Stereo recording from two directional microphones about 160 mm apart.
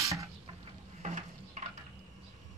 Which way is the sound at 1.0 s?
50° right (ahead or behind).